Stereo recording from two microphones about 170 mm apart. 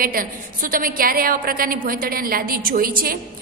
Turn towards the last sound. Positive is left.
turn(degrees=-60)  # may be behind; listen again after turning